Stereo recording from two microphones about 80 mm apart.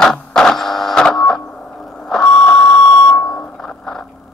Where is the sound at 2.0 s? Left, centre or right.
Centre.